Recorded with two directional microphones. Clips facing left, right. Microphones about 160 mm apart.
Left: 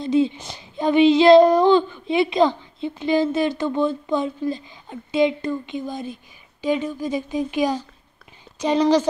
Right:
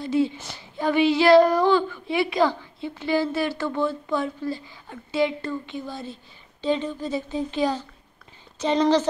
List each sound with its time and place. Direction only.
0.0 s speech: 20° left (ahead or behind)